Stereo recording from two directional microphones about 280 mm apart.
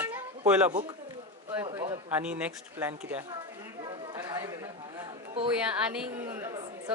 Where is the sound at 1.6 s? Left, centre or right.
Centre.